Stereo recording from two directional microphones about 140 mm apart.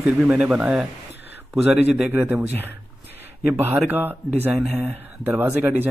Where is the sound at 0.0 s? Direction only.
10° right (ahead or behind).